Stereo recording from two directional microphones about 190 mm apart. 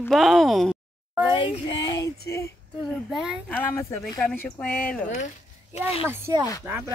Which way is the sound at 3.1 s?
5° right (ahead or behind).